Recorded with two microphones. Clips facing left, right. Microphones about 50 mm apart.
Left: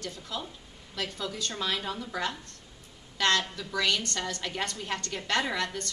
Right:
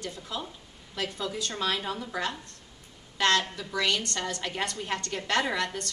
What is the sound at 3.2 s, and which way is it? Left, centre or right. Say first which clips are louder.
A woman's voice: right 2 dB; right.